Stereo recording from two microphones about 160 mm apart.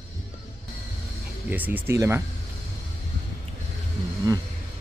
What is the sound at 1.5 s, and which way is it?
Speech, 10° right (ahead or behind).